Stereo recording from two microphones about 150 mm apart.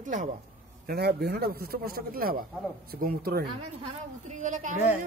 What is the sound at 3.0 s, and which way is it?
Speech, 90° right.